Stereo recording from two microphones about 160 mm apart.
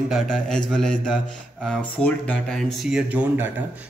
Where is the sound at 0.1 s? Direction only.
5° left (ahead or behind).